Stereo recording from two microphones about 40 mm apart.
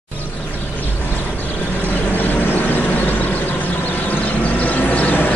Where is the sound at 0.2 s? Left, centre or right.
Left.